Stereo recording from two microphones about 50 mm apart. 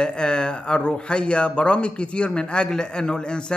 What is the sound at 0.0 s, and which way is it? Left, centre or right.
Speech, centre.